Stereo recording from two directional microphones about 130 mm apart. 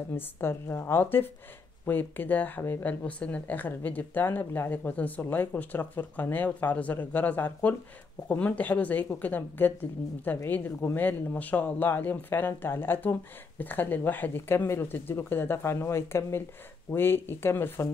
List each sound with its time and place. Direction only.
0.1 s speech: 15° left (ahead or behind)